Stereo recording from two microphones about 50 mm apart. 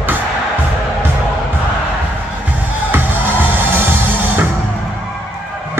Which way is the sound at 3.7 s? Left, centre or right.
Right.